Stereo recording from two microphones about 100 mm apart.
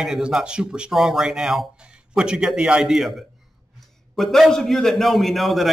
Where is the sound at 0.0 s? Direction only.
5° right (ahead or behind).